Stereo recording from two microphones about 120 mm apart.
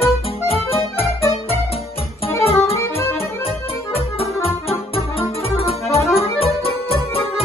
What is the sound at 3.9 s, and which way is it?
Music, 55° left (ahead or behind).